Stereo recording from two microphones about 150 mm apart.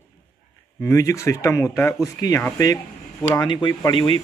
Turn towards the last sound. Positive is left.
turn(degrees=30)  # may be behind; listen again after turning